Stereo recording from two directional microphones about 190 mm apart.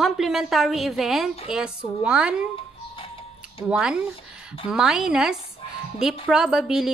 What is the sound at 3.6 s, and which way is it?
Speech, 5° right (ahead or behind).